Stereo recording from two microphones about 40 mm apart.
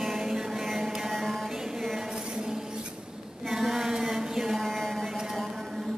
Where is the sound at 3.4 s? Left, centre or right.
Centre.